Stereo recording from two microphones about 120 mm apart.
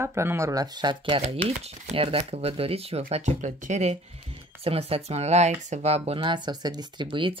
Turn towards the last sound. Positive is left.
turn(degrees=-40)  # may be behind; listen again after turning